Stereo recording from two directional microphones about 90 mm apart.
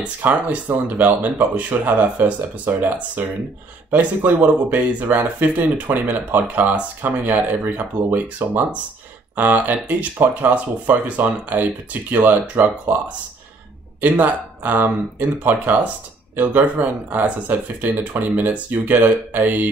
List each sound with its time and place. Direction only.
0.2 s speech: 20° right (ahead or behind)
14.0 s speech: 20° right (ahead or behind)